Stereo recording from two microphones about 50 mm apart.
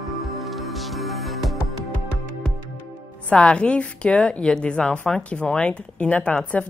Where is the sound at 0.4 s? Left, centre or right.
Centre.